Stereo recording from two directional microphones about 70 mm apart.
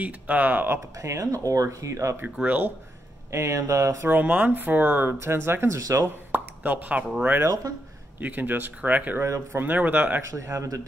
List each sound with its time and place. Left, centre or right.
0.0 s speech: right
0.9 s speech: right
2.3 s speech: right
3.3 s speech: right
4.1 s speech: right
5.8 s speech: right
6.3 s plop: right
8.2 s speech: right
9.2 s speech: right
9.6 s speech: right
10.2 s speech: right